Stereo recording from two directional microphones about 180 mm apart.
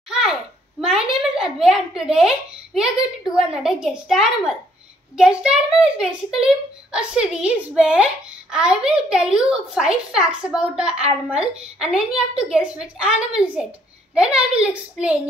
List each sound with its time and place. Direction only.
0.2 s a child's voice: 5° right (ahead or behind)